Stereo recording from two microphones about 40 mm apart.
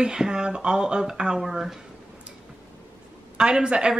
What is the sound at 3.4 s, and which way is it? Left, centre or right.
Speech, right.